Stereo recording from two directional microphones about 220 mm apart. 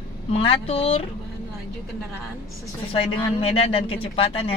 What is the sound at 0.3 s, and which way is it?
Speech, 25° left (ahead or behind).